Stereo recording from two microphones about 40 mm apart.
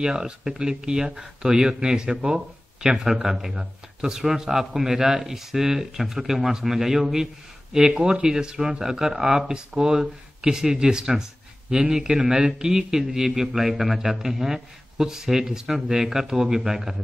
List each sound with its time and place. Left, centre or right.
0.0 s speech: centre